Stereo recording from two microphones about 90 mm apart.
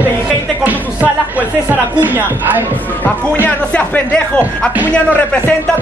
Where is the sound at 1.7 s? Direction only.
20° right (ahead or behind).